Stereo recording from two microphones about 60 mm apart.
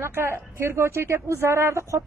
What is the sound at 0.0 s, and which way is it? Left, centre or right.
A woman's voice, right.